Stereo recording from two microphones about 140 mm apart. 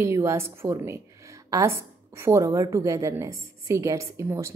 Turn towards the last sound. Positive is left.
turn(degrees=-20)  # may be behind; listen again after turning